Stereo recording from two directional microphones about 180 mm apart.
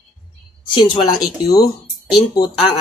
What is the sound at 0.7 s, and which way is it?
Speech, 25° left (ahead or behind).